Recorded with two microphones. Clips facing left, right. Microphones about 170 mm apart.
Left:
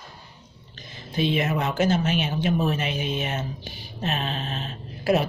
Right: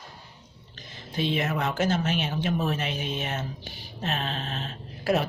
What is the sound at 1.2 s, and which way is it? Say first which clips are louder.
Speech: left 3 dB; 15° left (ahead or behind).